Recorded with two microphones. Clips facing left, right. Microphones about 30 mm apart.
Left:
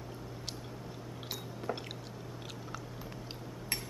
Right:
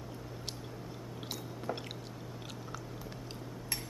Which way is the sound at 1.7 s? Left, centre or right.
Centre.